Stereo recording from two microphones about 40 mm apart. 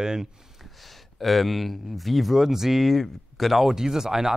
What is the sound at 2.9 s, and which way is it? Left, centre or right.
Speech, centre.